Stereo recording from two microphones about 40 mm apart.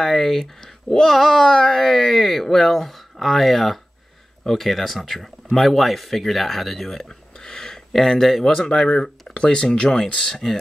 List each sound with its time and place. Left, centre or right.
0.0 s speech: centre
8.8 s speech: left